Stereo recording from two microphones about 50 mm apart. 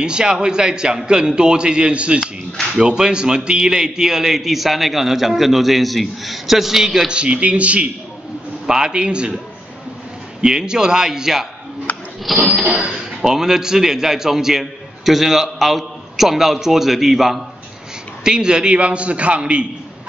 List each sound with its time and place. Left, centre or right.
0.0 s a man's voice: centre
7.1 s a man's voice: right
8.6 s a man's voice: centre
10.4 s a man's voice: centre
11.9 s a sound: left
12.4 s a man's voice: centre
12.9 s a man's voice: centre
18.2 s a man's voice: centre